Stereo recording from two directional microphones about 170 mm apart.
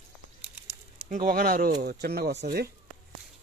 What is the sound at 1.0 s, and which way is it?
Speech, 55° right (ahead or behind).